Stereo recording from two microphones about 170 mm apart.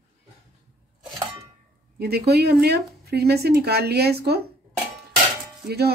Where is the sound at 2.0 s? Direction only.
70° right (ahead or behind).